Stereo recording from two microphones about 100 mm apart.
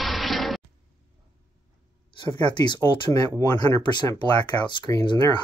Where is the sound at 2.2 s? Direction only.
50° left (ahead or behind).